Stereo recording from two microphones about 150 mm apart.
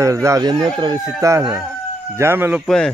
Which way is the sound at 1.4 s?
5° right (ahead or behind).